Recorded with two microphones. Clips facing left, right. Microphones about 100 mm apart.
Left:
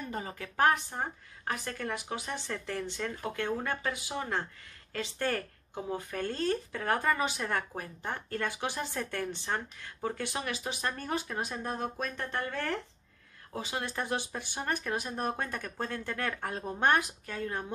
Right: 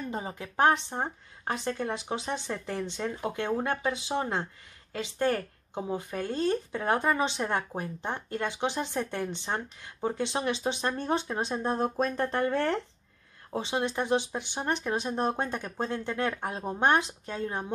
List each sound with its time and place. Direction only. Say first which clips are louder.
0.1 s speech: right 3 dB; 20° right (ahead or behind)